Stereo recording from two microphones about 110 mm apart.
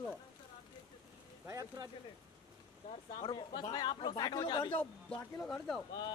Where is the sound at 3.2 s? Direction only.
45° left (ahead or behind).